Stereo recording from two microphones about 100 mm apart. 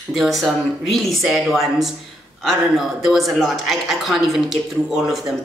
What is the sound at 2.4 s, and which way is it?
A woman's voice, centre (ahead or behind).